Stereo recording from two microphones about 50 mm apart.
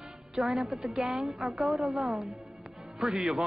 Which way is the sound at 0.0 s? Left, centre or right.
Centre.